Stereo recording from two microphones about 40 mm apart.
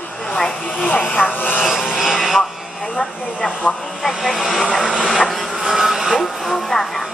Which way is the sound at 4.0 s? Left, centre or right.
Centre.